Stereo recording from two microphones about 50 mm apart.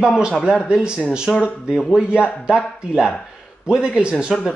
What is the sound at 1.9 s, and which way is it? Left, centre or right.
Speech, centre.